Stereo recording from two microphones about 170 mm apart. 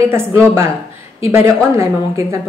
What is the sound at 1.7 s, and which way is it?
Speech, 15° right (ahead or behind).